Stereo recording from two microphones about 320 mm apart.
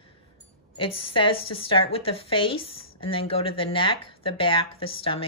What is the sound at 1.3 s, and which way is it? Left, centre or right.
Speech, left.